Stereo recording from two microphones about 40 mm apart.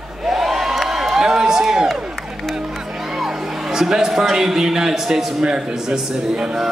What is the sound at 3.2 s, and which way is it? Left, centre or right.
A man's voice, centre.